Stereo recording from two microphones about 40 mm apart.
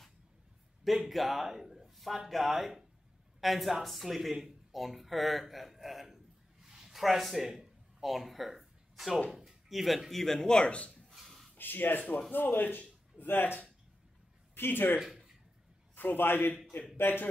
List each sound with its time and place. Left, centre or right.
0.9 s a woman's voice: centre
6.6 s a sound: centre
9.3 s speech: centre
9.7 s speech: centre
10.5 s speech: left
11.1 s a sound: centre
11.5 s a man's voice: left
14.5 s a man's voice: left